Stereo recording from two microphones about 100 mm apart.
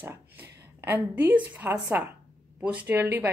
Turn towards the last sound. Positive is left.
turn(degrees=-20)  # may be behind; listen again after turning